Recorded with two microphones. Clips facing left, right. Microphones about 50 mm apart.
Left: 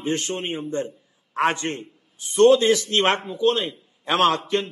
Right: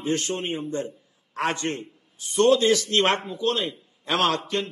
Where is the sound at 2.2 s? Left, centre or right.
Centre.